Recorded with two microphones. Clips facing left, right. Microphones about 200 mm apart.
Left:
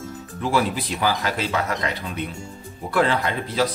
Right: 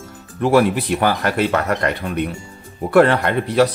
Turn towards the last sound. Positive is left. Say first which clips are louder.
# right 7 dB
turn(degrees=-65)  # may be behind; listen again after turning